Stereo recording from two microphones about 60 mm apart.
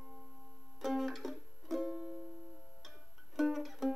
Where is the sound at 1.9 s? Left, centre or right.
Centre.